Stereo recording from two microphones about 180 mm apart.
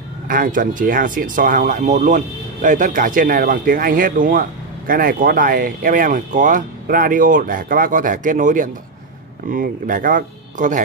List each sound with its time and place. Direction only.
0.3 s speech: 50° right (ahead or behind)